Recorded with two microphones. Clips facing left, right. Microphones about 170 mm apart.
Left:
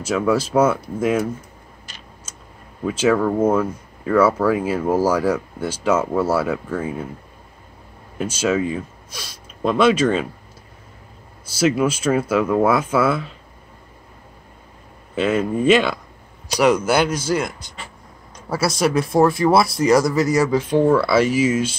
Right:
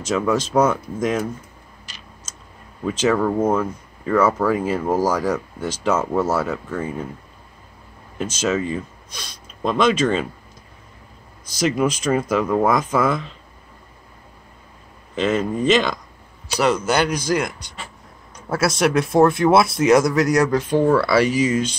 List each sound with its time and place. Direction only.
0.0 s speech: 10° left (ahead or behind)
2.8 s speech: 10° left (ahead or behind)
8.2 s speech: 10° left (ahead or behind)
11.4 s speech: 5° left (ahead or behind)
15.1 s speech: 5° left (ahead or behind)
17.1 s speech: 15° right (ahead or behind)
18.5 s speech: centre (ahead or behind)